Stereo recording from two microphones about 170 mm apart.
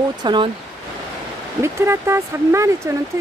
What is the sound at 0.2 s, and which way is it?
Speech, 25° right (ahead or behind).